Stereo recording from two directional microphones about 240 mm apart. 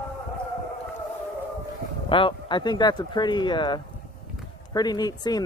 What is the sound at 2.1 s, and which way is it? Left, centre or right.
Speech, left.